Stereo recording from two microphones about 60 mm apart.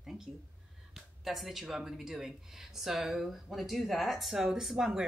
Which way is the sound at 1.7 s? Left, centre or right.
Centre.